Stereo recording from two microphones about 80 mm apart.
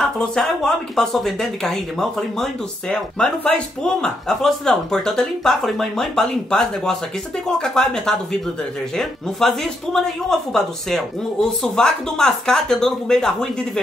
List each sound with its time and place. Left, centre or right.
0.0 s speech: centre